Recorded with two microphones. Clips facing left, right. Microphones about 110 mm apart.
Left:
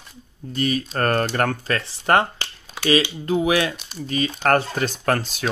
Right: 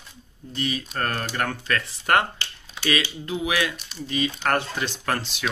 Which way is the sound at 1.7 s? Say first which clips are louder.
Left 1 dB; 30° left (ahead or behind).